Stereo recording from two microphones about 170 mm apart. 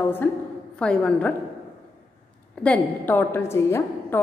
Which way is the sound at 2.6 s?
10° left (ahead or behind).